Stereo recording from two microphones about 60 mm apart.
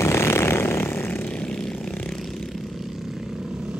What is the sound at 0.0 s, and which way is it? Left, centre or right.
Vehicle, left.